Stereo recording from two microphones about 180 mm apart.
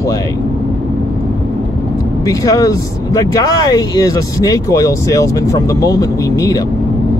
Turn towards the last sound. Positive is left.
turn(degrees=20)  # may be behind; listen again after turning